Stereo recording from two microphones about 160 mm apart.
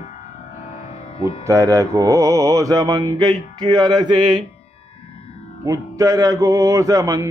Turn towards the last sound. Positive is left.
turn(degrees=-20)  # may be behind; listen again after turning